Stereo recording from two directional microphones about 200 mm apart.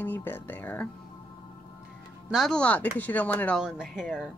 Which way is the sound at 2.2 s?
Centre (ahead or behind).